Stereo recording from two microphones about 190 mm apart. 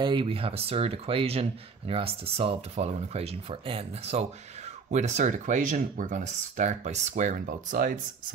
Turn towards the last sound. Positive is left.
turn(degrees=-45)  # may be behind; listen again after turning